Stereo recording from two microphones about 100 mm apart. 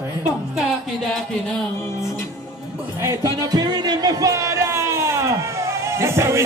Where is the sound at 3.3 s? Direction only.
40° right (ahead or behind).